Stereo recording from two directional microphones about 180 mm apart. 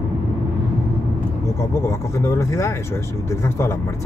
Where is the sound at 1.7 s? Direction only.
15° left (ahead or behind).